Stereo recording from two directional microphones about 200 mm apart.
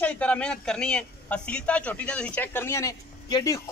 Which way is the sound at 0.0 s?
5° left (ahead or behind).